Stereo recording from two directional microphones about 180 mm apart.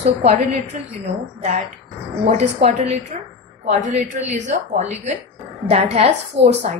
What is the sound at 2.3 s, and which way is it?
A woman's voice, 35° right (ahead or behind).